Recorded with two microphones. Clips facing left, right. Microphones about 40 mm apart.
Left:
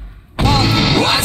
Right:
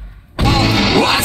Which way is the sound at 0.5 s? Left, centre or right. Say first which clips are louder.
Right 2 dB; right.